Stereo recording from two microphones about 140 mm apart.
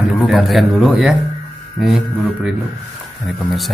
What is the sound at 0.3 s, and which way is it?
Speech, centre (ahead or behind).